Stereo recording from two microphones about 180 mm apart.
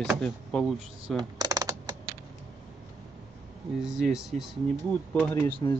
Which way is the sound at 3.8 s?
5° right (ahead or behind).